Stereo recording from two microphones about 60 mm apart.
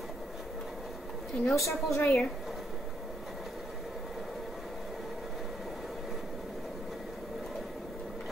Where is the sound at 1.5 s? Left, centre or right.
Left.